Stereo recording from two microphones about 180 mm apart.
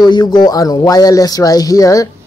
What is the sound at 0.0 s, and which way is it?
Speech, 25° left (ahead or behind).